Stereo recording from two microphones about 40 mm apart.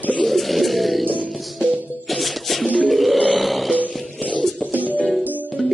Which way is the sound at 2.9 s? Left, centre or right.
Centre.